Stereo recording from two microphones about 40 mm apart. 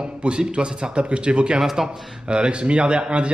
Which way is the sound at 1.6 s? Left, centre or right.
Centre.